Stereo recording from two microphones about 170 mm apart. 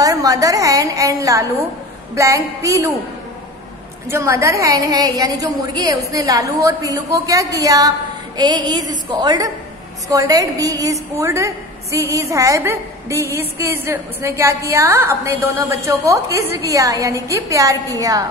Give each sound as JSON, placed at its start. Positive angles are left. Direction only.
{"t": 0.0, "sound": "a woman's voice", "side_deg": -20}
{"t": 4.1, "sound": "a woman's voice", "side_deg": -15}